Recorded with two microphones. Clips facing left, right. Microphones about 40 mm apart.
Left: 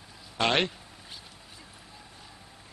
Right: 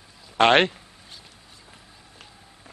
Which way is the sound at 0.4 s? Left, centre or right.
Right.